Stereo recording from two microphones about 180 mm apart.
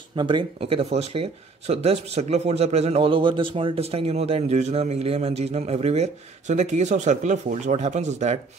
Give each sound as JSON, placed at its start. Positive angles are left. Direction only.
{"t": 0.1, "sound": "speech", "side_deg": -25}